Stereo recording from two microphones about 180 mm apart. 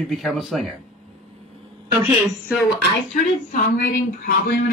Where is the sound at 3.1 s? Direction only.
45° left (ahead or behind).